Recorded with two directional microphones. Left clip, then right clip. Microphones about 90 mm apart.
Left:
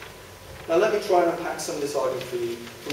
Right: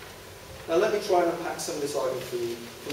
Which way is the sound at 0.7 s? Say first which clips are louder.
Left 3 dB; 5° right (ahead or behind).